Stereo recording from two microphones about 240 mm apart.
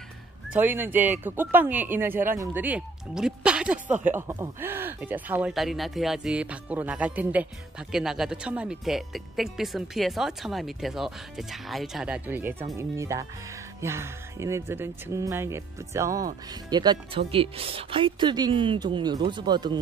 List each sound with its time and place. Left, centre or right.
0.5 s speech: centre